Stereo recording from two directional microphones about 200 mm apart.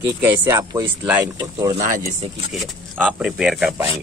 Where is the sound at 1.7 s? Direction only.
35° right (ahead or behind).